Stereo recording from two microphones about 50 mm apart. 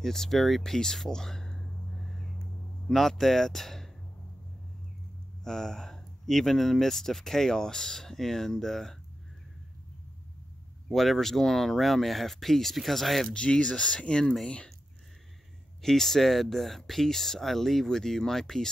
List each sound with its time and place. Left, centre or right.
0.0 s speech: centre
5.4 s speech: centre
10.9 s speech: centre
13.3 s speech: centre
15.8 s speech: centre